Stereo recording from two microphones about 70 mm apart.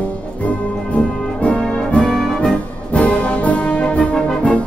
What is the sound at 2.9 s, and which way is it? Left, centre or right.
Brass instrument, centre.